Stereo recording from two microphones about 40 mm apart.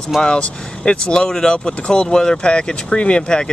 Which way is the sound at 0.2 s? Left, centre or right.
Left.